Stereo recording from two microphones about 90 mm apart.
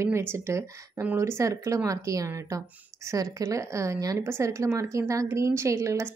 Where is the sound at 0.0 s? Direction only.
30° right (ahead or behind).